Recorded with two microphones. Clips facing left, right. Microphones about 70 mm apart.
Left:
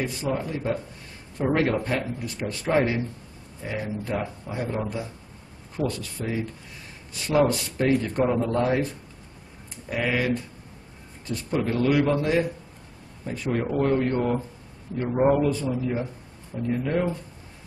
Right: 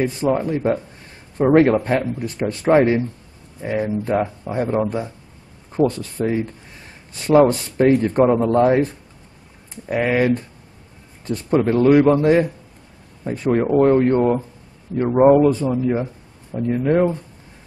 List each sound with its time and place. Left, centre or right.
0.0 s speech: right
9.8 s speech: right
15.6 s speech: right